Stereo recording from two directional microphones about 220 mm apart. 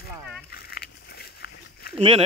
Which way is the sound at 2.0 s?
25° right (ahead or behind).